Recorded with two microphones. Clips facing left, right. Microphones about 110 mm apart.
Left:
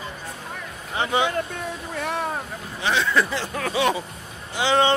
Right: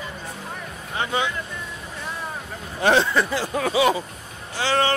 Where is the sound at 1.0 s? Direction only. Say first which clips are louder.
Left 2 dB; 20° left (ahead or behind).